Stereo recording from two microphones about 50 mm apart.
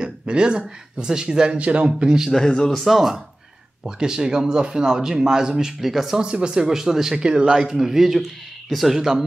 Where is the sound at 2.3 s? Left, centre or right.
Centre.